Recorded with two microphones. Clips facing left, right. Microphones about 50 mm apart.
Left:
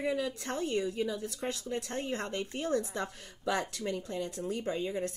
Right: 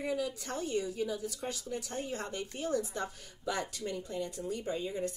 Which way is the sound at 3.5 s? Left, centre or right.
Left.